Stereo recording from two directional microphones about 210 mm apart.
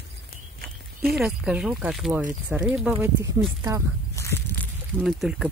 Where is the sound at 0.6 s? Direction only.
45° right (ahead or behind).